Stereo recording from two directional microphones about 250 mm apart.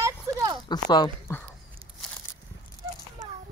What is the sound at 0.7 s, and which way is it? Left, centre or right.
Speech, centre.